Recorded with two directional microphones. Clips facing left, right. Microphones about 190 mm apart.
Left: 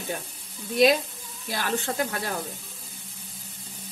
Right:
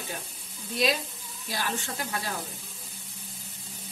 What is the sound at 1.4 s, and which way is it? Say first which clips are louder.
Speech: left 5 dB; 60° left (ahead or behind).